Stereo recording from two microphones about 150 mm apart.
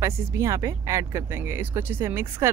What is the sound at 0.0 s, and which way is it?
Speech, 20° right (ahead or behind).